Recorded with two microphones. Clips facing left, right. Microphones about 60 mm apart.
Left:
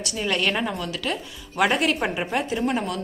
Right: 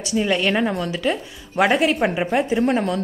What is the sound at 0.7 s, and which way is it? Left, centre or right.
A woman's voice, right.